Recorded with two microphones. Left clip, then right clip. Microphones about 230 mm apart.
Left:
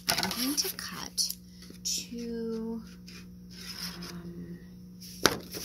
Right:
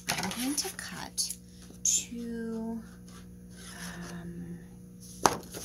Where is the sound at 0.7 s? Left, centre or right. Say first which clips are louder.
Left 3 dB; centre.